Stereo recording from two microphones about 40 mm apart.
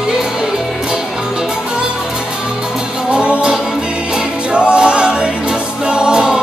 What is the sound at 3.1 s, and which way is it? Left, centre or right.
Music, right.